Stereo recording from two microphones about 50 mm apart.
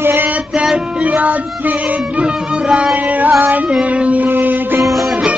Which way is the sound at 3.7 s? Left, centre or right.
Right.